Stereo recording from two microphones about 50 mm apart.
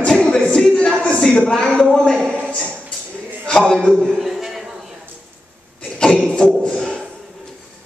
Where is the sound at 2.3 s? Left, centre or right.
Left.